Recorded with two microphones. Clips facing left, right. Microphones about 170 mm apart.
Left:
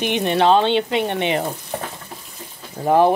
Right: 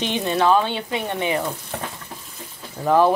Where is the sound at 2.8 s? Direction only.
20° left (ahead or behind).